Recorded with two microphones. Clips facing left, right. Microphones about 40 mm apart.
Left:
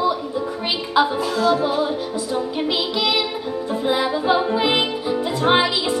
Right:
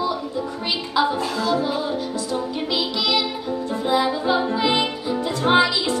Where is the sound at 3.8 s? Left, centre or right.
Centre.